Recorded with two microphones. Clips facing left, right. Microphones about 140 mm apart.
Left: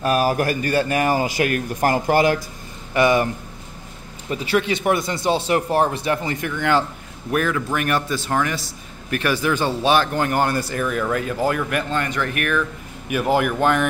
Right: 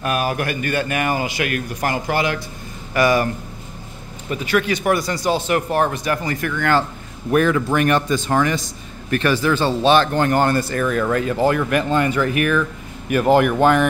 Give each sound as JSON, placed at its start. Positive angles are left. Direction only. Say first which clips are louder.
{"t": 0.0, "sound": "a man's voice", "louder": "left 3 dB", "side_deg": 35}
{"t": 2.9, "sound": "speech", "louder": "even", "side_deg": 20}
{"t": 4.3, "sound": "speech", "louder": "right 1 dB", "side_deg": 30}
{"t": 7.2, "sound": "speech", "louder": "right 5 dB", "side_deg": 0}